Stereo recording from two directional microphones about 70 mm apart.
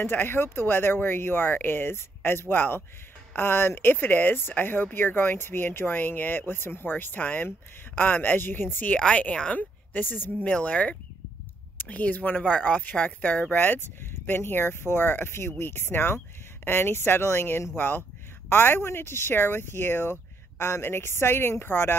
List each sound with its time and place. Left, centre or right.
0.0 s speech: left
8.9 s speech: centre